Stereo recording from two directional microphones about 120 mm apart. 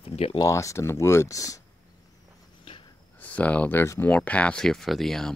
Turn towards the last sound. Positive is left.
turn(degrees=5)  # may be behind; listen again after turning